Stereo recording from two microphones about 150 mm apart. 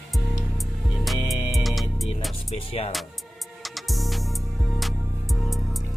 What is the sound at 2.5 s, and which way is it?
Music, 40° left (ahead or behind).